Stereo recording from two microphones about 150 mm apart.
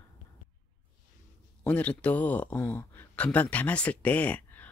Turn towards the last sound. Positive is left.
turn(degrees=10)  # may be behind; listen again after turning